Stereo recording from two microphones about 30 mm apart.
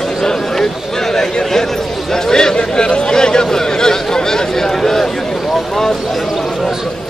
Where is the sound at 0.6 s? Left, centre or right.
Centre.